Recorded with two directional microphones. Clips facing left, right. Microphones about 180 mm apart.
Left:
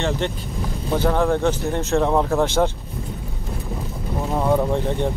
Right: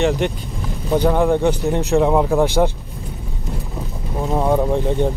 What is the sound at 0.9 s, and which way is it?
Speech, 15° right (ahead or behind).